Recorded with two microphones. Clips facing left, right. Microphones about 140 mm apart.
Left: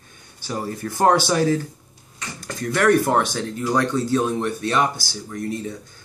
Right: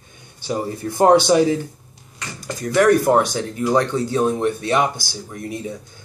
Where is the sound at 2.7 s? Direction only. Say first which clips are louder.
Right 3 dB; 15° right (ahead or behind).